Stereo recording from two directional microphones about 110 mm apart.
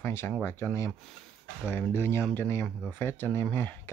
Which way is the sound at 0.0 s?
25° left (ahead or behind).